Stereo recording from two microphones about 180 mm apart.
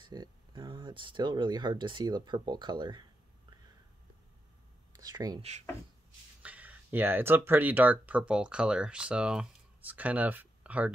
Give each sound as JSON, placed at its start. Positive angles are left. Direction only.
{"t": 0.0, "sound": "speech", "side_deg": -25}
{"t": 4.9, "sound": "speech", "side_deg": -20}
{"t": 6.4, "sound": "speech", "side_deg": -10}